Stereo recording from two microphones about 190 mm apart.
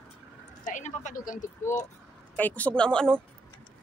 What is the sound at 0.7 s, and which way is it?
Speech, 40° left (ahead or behind).